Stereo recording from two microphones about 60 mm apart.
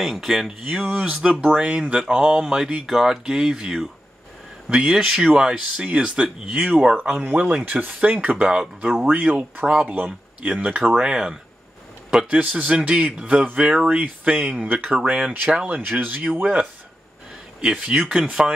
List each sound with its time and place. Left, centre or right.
0.0 s speech: centre
7.2 s speech: right
9.7 s a man's voice: centre
12.4 s speech: right
17.6 s speech: centre